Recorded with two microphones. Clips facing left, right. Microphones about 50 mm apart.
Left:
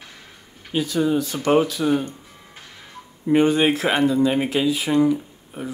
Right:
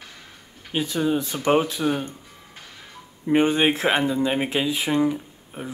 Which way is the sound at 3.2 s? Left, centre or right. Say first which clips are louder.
Left 2 dB; right.